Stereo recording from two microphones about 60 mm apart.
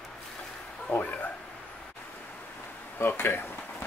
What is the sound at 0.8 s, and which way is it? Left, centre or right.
Speech, left.